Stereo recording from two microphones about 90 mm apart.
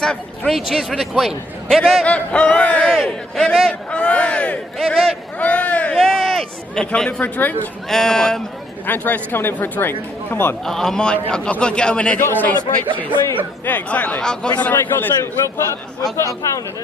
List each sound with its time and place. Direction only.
0.0 s a man's voice: 10° left (ahead or behind)
0.5 s a man's voice: centre (ahead or behind)
5.4 s a sound: 15° left (ahead or behind)
5.9 s speech: 5° left (ahead or behind)
7.9 s a man's voice: 5° left (ahead or behind)
8.8 s speech: 20° left (ahead or behind)
10.6 s a man's voice: 5° left (ahead or behind)
13.7 s a man's voice: 20° left (ahead or behind)
14.6 s speech: 20° left (ahead or behind); by 16.6 s 40° left (ahead or behind)